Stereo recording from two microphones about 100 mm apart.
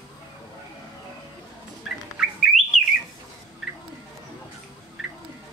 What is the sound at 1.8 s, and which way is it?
Bird, 5° right (ahead or behind).